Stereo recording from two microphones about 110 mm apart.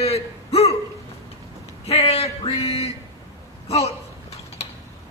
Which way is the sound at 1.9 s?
70° left (ahead or behind).